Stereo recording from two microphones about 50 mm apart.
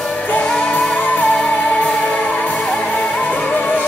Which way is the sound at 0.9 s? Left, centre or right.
Left.